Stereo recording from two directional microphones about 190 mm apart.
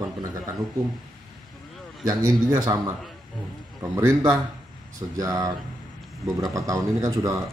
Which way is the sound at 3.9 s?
15° right (ahead or behind).